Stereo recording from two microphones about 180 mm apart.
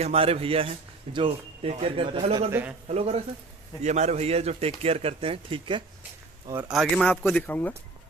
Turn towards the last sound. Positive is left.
turn(degrees=10)  # may be behind; listen again after turning